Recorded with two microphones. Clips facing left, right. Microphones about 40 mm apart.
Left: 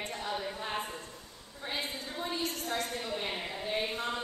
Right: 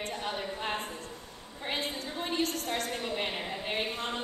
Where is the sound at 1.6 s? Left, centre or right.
Right.